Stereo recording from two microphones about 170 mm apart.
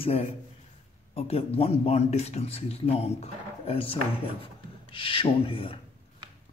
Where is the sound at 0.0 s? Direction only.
35° left (ahead or behind).